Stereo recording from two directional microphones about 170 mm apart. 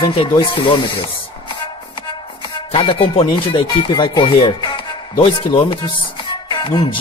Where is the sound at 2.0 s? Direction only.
30° left (ahead or behind).